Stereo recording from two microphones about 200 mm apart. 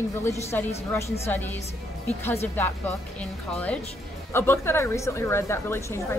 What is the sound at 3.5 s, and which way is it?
Speech, 5° left (ahead or behind).